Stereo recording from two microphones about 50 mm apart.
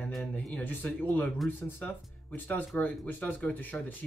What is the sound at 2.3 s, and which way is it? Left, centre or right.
Speech, left.